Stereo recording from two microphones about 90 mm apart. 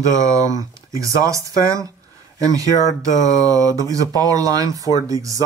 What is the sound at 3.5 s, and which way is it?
Speech, 40° right (ahead or behind).